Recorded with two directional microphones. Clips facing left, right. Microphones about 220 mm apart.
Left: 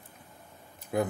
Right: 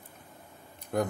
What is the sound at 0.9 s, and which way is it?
Speech, 5° left (ahead or behind).